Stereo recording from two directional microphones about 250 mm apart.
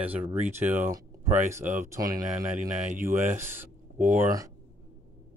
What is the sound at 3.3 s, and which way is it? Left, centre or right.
Speech, centre.